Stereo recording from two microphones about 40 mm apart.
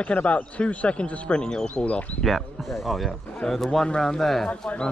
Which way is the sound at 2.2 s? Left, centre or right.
Centre.